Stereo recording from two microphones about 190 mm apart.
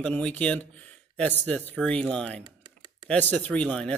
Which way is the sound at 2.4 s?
25° right (ahead or behind).